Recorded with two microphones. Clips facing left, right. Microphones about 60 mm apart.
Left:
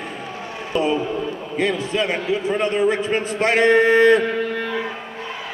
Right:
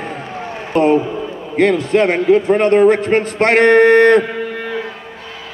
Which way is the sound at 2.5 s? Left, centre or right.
Right.